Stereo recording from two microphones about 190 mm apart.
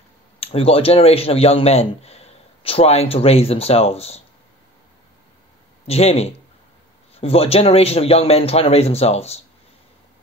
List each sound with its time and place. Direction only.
0.4 s speech: 30° left (ahead or behind)
5.9 s speech: 35° left (ahead or behind)